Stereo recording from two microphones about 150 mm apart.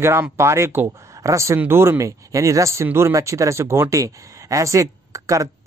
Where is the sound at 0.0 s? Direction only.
15° right (ahead or behind).